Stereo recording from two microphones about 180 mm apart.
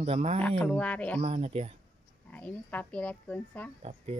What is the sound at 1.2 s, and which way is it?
Speech, 35° right (ahead or behind).